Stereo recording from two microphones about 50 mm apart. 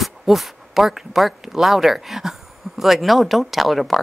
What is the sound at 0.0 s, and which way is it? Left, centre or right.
Speech, centre.